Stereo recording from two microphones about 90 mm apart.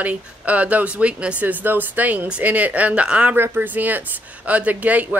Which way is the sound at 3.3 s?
25° right (ahead or behind).